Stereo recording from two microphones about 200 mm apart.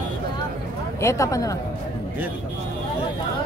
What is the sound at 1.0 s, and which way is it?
Speech, 15° left (ahead or behind).